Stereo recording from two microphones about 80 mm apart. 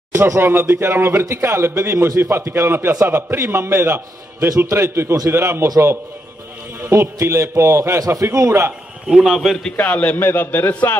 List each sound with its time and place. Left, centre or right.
0.1 s a man's voice: right
6.8 s a man's voice: right
9.1 s a man's voice: centre
9.8 s a man's voice: centre